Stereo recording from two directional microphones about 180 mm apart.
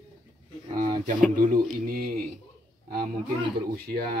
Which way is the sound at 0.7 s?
50° right (ahead or behind).